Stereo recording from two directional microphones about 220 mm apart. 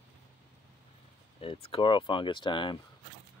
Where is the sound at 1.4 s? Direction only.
25° left (ahead or behind).